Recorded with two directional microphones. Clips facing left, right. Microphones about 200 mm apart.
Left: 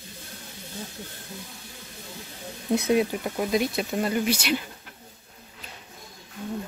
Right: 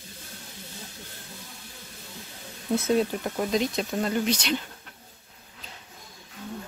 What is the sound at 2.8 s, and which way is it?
Speech, 15° left (ahead or behind).